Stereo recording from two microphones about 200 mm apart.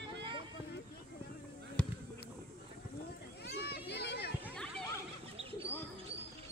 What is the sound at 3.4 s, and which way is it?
Children playing, 55° left (ahead or behind).